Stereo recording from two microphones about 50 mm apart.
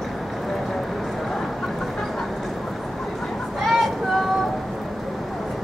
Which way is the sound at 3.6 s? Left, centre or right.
Centre.